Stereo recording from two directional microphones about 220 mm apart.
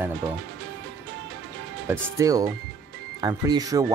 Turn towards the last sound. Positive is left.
turn(degrees=-15)  # may be behind; listen again after turning